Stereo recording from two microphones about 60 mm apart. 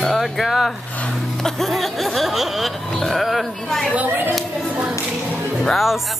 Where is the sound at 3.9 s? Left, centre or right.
Right.